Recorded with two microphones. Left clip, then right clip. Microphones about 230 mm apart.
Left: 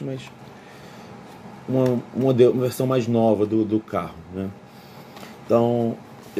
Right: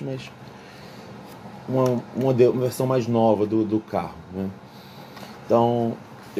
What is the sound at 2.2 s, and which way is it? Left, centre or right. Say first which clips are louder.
Speech: left 2 dB; centre.